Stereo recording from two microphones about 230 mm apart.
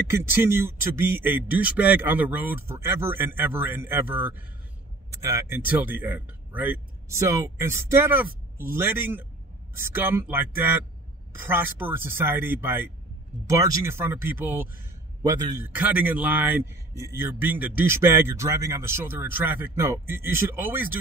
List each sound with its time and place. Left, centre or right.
0.1 s a man's voice: centre